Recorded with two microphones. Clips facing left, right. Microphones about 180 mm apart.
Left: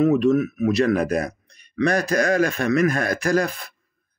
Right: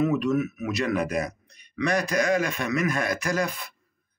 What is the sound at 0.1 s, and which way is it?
Speech, 30° left (ahead or behind).